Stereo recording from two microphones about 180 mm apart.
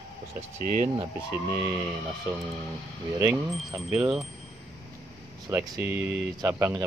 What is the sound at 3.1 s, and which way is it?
Speech, 15° right (ahead or behind).